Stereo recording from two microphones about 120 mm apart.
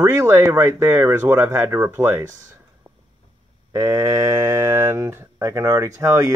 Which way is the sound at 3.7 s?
25° right (ahead or behind).